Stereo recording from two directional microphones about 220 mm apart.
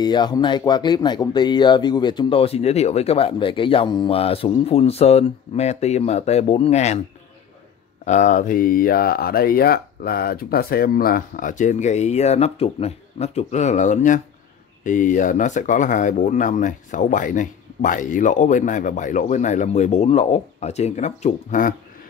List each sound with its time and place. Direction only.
0.0 s speech: 20° left (ahead or behind)
8.0 s speech: 35° left (ahead or behind)